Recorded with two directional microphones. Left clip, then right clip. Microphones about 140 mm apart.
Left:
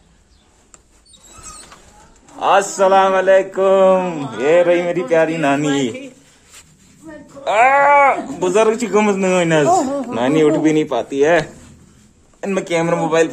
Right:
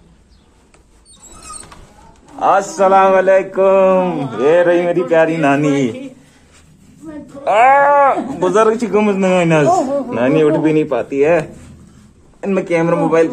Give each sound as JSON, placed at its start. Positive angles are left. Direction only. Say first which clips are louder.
{"t": 2.3, "sound": "mantra", "louder": "right 1 dB", "side_deg": 5}
{"t": 7.4, "sound": "mantra", "louder": "right 2 dB", "side_deg": 5}
{"t": 9.7, "sound": "a man's voice", "louder": "right 2 dB", "side_deg": 25}
{"t": 12.4, "sound": "speech", "louder": "right 3 dB", "side_deg": 15}